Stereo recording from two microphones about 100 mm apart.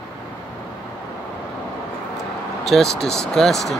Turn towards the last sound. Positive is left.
turn(degrees=5)  # may be behind; listen again after turning